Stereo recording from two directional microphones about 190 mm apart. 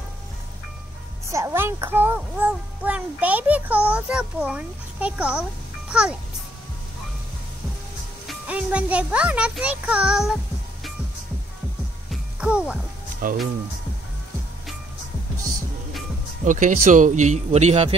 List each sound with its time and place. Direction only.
1.3 s a child's voice: 15° right (ahead or behind)
8.3 s a child's voice: 5° right (ahead or behind)
12.1 s music: 5° right (ahead or behind)
13.2 s speech: 45° right (ahead or behind)
16.4 s speech: 40° right (ahead or behind)